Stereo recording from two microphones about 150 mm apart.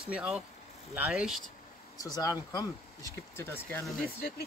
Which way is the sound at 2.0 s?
25° left (ahead or behind).